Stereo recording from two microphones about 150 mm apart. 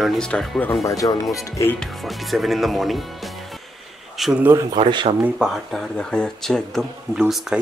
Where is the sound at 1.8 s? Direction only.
Centre (ahead or behind).